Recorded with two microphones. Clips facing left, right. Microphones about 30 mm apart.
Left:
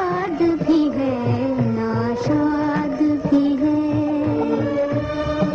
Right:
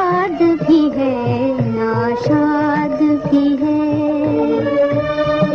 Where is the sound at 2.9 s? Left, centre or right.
Right.